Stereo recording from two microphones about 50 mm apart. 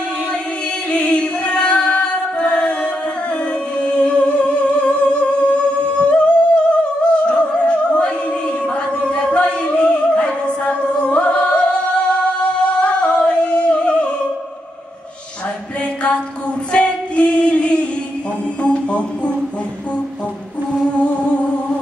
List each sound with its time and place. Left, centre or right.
0.9 s music: left
12.8 s singing: left
16.7 s singing: left
18.6 s music: left